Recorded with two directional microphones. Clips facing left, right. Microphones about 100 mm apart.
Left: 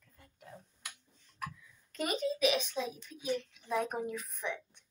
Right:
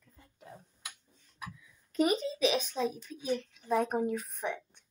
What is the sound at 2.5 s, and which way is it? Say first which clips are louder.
Speech: right 3 dB; 35° right (ahead or behind).